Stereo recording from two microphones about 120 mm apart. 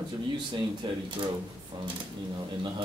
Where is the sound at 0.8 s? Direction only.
45° right (ahead or behind).